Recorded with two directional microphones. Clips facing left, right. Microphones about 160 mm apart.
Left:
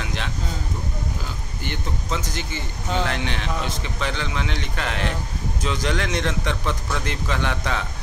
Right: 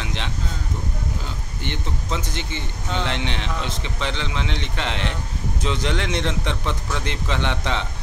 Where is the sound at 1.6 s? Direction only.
25° right (ahead or behind).